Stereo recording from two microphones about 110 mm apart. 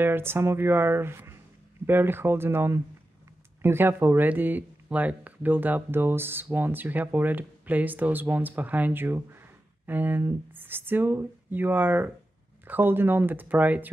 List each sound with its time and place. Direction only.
0.0 s speech: 20° right (ahead or behind)